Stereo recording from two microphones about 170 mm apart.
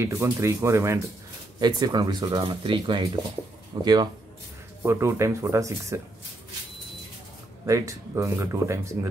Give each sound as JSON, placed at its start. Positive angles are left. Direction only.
{"t": 0.0, "sound": "speech", "side_deg": -15}
{"t": 7.6, "sound": "speech", "side_deg": -20}